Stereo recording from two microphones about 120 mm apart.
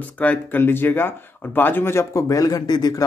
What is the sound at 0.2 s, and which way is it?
Speech, 15° left (ahead or behind).